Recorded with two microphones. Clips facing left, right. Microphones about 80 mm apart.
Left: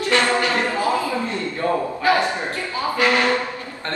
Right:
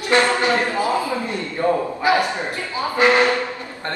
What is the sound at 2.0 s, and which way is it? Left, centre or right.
A man's voice, centre.